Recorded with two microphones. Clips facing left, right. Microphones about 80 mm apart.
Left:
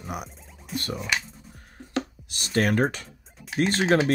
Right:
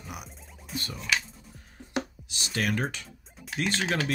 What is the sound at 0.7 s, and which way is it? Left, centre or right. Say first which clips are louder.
Speech: left 4 dB; centre.